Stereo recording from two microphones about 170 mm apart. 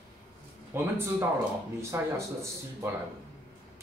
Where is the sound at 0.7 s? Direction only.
15° right (ahead or behind).